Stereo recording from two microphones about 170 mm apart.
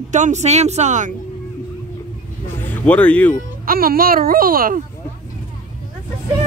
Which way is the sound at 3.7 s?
60° right (ahead or behind).